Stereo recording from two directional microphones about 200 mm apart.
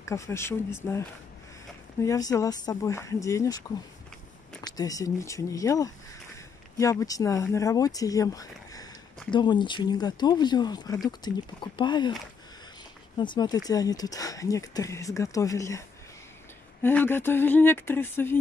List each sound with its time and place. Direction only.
0.0 s speech: 15° left (ahead or behind)
2.0 s speech: 15° left (ahead or behind)
13.2 s speech: 20° left (ahead or behind)
16.8 s speech: 10° left (ahead or behind)